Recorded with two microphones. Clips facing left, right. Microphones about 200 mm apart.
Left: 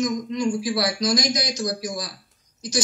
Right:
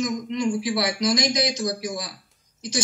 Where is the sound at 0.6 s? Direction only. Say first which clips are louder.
Even; 25° right (ahead or behind).